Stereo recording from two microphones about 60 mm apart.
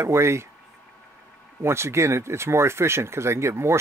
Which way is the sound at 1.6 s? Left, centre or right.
Right.